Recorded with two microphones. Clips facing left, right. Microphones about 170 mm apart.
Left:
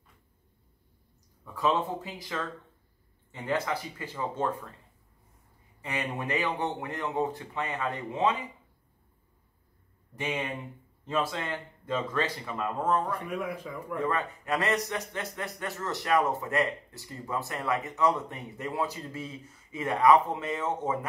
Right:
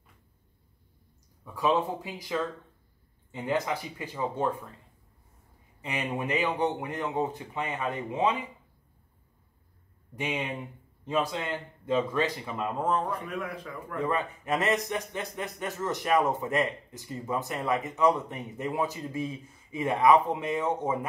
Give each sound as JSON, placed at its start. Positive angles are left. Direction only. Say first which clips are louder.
{"t": 1.4, "sound": "speech", "louder": "right 1 dB", "side_deg": -15}
{"t": 5.8, "sound": "a sound", "louder": "even", "side_deg": -15}
{"t": 6.1, "sound": "speech", "louder": "right 3 dB", "side_deg": -15}
{"t": 10.1, "sound": "speech", "louder": "right 1 dB", "side_deg": -15}
{"t": 13.3, "sound": "speech", "louder": "left 2 dB", "side_deg": 10}
{"t": 14.0, "sound": "speech", "louder": "right 2 dB", "side_deg": -20}